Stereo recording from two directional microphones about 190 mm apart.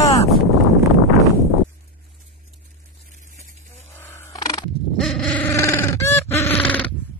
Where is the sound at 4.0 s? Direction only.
10° left (ahead or behind).